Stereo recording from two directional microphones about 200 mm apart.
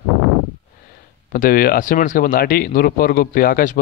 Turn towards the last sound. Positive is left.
turn(degrees=45)  # may be behind; listen again after turning